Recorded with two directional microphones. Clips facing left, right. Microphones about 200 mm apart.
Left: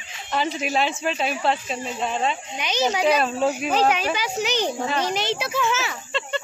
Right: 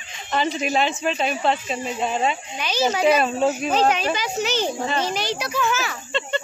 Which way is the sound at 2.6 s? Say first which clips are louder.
Right 1 dB; 20° left (ahead or behind).